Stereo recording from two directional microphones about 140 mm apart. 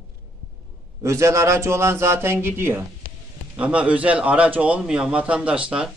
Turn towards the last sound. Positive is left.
turn(degrees=-5)  # may be behind; listen again after turning